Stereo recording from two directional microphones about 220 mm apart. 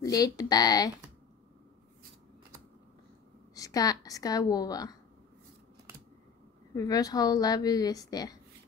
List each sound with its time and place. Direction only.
0.0 s a woman's voice: 15° left (ahead or behind)
3.5 s a woman's voice: 15° left (ahead or behind)
6.7 s a woman's voice: 15° left (ahead or behind)